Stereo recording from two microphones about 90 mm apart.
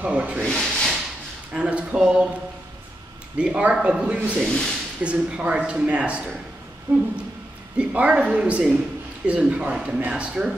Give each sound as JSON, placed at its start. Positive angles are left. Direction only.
{"t": 0.0, "sound": "speech", "side_deg": -15}
{"t": 0.5, "sound": "speech", "side_deg": 5}
{"t": 1.5, "sound": "speech", "side_deg": -10}
{"t": 3.3, "sound": "speech", "side_deg": -10}
{"t": 4.5, "sound": "speech", "side_deg": 5}
{"t": 5.0, "sound": "speech", "side_deg": -15}
{"t": 6.9, "sound": "speech", "side_deg": -25}
{"t": 7.7, "sound": "speech", "side_deg": -15}